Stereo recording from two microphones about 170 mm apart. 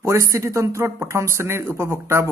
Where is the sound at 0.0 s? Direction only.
15° right (ahead or behind).